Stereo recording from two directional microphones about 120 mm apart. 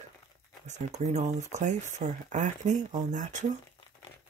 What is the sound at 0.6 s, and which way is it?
Speech, 75° right (ahead or behind).